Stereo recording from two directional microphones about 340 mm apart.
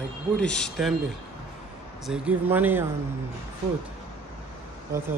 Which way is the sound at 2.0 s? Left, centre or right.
Centre.